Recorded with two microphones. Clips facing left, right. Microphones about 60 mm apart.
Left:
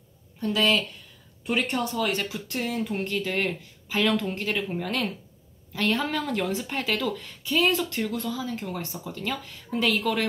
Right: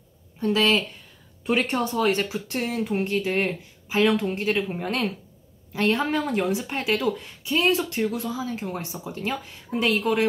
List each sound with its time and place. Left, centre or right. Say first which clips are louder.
0.4 s a woman's voice: right 2 dB; right